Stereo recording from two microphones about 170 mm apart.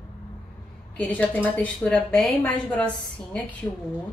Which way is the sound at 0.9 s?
10° left (ahead or behind).